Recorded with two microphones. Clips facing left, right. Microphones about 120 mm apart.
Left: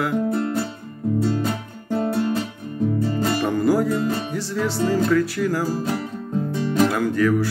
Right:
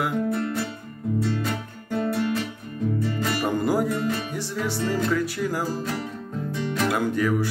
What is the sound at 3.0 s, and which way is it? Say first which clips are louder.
Music: left 4 dB; 30° left (ahead or behind).